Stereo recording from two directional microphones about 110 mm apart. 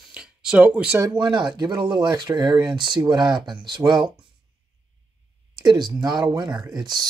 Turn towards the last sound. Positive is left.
turn(degrees=-40)  # may be behind; listen again after turning